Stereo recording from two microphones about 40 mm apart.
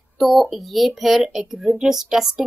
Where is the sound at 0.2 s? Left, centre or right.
Centre.